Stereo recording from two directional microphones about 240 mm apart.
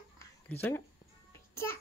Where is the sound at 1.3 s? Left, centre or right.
Centre.